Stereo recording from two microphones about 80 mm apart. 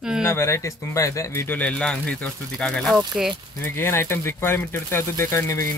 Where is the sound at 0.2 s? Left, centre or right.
Left.